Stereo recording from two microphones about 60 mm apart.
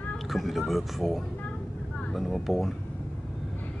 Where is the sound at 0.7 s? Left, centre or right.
Centre.